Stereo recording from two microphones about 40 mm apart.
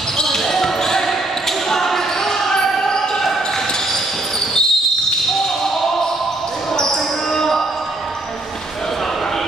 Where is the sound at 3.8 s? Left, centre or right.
Centre.